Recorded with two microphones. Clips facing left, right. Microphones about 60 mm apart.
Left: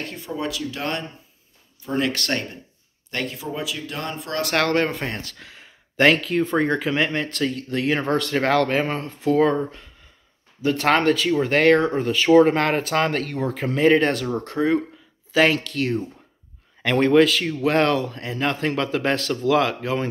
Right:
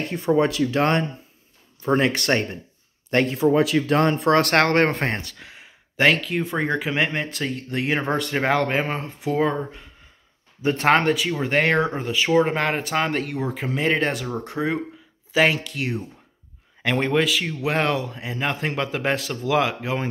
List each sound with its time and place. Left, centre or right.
0.3 s speech: right
2.1 s speech: right
3.1 s speech: right
3.4 s speech: right
5.4 s a sound: right
5.9 s speech: centre
10.6 s speech: right
12.0 s speech: centre